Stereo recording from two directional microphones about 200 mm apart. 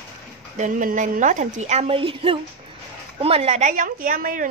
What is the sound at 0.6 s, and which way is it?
A woman's voice, 40° right (ahead or behind).